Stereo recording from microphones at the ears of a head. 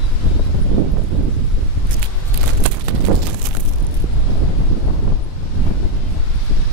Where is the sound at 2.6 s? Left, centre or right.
Right.